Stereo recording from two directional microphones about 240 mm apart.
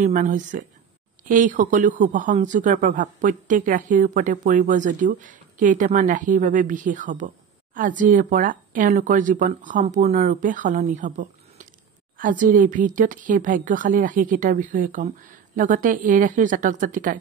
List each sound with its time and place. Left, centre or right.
0.0 s speech: right